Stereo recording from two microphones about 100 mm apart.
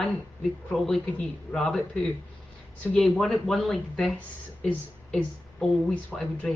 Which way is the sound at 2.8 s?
5° left (ahead or behind).